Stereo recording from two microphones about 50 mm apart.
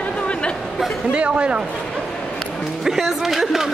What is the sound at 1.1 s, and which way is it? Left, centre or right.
Speech, right.